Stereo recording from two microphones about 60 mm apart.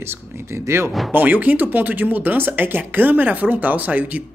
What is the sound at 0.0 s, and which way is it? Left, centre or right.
Speech, right.